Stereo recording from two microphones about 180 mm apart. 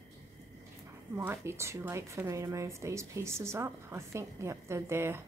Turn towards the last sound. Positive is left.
turn(degrees=-15)  # may be behind; listen again after turning